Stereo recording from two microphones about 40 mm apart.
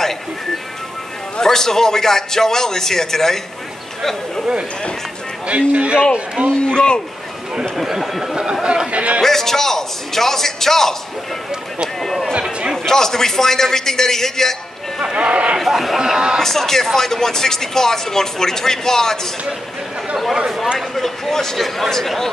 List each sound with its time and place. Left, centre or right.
1.4 s speech: centre
5.7 s a man's voice: right
6.6 s a man's voice: left
7.7 s speech: centre
8.6 s speech: right
9.2 s speech: centre
12.0 s chatter: centre
12.7 s speech: centre
15.1 s speech: right
15.6 s speech: centre
16.0 s speech: centre
16.3 s speech: centre
20.9 s speech: centre